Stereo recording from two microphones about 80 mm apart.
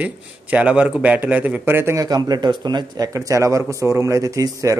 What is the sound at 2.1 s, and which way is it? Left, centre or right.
Speech, right.